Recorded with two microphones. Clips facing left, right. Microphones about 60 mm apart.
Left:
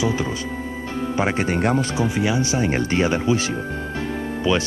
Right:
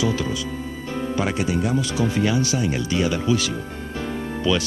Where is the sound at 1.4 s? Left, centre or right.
Left.